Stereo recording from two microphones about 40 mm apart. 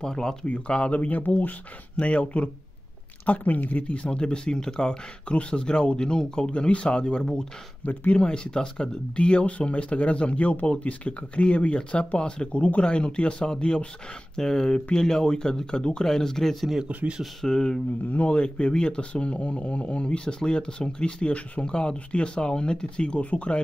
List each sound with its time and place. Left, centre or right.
0.0 s speech: centre
0.5 s speech: left
2.0 s speech: left
3.3 s speech: left
3.9 s speech: left
7.8 s speech: left
8.1 s speech: left
16.1 s speech: centre
16.8 s speech: right
17.5 s speech: centre
18.1 s speech: left